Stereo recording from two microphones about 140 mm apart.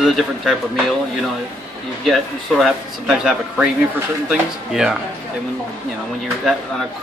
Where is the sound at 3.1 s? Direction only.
5° right (ahead or behind).